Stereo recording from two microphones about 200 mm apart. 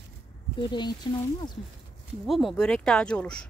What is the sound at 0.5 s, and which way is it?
Speech, 20° left (ahead or behind).